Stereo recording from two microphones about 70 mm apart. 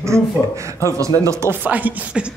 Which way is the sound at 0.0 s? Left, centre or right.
Right.